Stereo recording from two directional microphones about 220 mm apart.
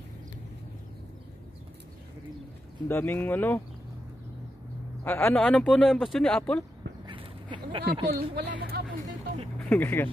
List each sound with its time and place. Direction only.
2.9 s speech: 10° left (ahead or behind)
5.0 s speech: 5° left (ahead or behind)
7.8 s speech: 45° right (ahead or behind)
9.6 s speech: 5° left (ahead or behind)